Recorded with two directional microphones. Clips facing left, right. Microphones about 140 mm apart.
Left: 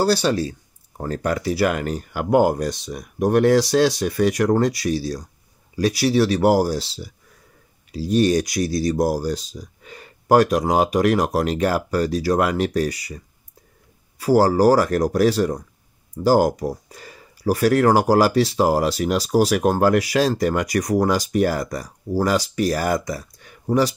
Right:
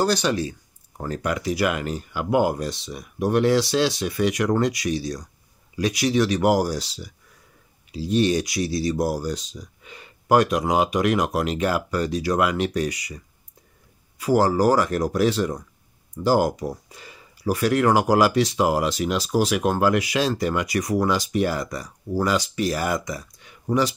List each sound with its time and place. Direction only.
0.0 s speech: 30° left (ahead or behind)
7.9 s speech: 40° left (ahead or behind)